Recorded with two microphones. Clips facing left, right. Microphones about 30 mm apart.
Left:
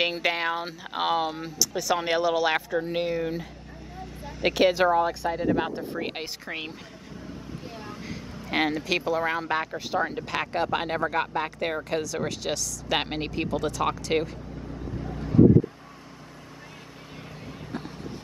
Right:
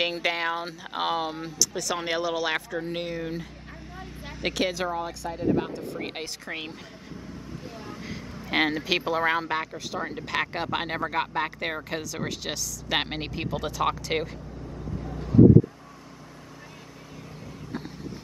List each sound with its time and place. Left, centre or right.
0.0 s speech: centre
4.6 s speech: centre
5.9 s speech: centre
7.6 s vehicle: centre
7.9 s speech: centre
9.7 s speech: centre
17.7 s a sound: centre